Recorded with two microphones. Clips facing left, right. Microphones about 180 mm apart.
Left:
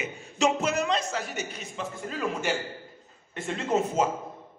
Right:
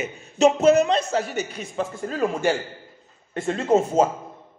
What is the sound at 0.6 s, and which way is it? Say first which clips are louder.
A man's voice: right 10 dB; 30° right (ahead or behind).